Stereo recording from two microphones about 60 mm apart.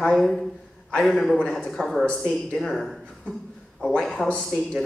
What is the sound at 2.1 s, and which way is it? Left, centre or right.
Speech, centre.